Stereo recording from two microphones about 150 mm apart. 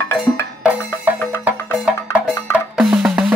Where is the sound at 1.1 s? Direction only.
10° right (ahead or behind).